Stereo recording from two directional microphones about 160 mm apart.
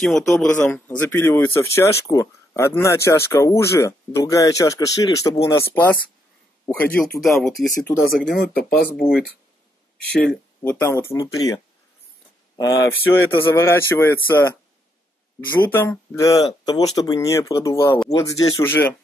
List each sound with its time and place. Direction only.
0.0 s speech: 5° left (ahead or behind); by 5.4 s 20° left (ahead or behind)
6.6 s a man's voice: 10° left (ahead or behind)
8.3 s speech: 65° left (ahead or behind)
10.6 s speech: 15° left (ahead or behind)
15.6 s speech: 10° left (ahead or behind)
16.2 s speech: 25° left (ahead or behind)